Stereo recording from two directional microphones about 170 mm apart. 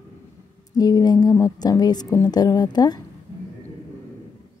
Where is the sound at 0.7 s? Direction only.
20° left (ahead or behind).